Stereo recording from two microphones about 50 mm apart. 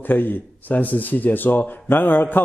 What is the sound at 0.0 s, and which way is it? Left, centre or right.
A man's voice, left.